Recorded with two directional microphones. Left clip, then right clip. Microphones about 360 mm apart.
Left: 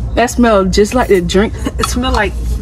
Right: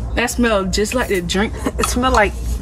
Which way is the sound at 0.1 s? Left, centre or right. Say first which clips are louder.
Left 6 dB; centre.